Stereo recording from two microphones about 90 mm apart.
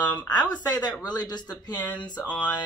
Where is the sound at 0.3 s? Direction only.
50° left (ahead or behind).